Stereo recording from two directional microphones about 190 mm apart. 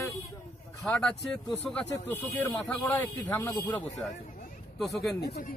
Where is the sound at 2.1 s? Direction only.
5° left (ahead or behind).